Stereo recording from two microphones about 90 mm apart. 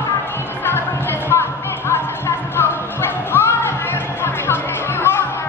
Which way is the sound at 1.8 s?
25° left (ahead or behind).